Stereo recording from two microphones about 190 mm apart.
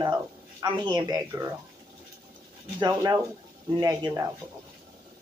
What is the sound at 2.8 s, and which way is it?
Speech, 15° right (ahead or behind).